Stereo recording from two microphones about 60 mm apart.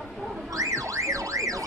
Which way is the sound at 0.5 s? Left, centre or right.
Right.